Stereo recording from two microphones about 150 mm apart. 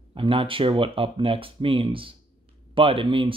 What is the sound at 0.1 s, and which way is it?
Speech, 35° right (ahead or behind).